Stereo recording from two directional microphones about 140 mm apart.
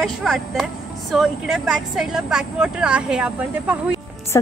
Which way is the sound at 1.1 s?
Centre (ahead or behind).